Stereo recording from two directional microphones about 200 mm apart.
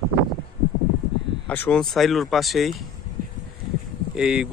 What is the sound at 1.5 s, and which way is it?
Speech, 5° left (ahead or behind).